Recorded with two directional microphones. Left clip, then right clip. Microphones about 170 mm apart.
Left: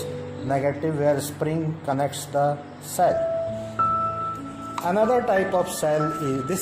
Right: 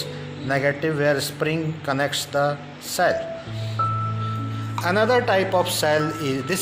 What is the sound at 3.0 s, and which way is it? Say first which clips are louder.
Speech: even; 15° right (ahead or behind).